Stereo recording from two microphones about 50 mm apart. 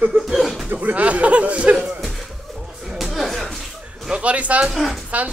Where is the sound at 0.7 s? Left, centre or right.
Right.